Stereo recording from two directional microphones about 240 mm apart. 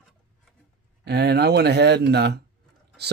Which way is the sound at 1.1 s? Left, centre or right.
Right.